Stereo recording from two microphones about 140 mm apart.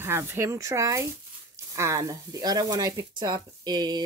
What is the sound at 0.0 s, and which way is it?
A woman's voice, 15° right (ahead or behind).